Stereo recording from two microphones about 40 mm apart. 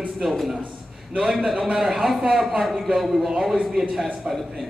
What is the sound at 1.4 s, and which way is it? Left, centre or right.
Speech, right.